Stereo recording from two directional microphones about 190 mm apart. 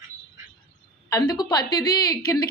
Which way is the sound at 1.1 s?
20° left (ahead or behind).